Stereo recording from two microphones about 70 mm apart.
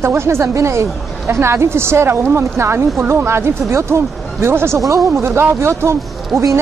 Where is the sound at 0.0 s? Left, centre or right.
Right.